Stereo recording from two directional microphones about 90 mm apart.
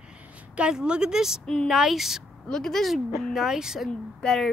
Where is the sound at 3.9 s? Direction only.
5° left (ahead or behind).